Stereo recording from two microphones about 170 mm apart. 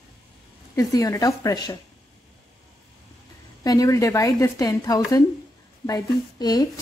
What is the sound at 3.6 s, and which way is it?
A woman's voice, 20° left (ahead or behind).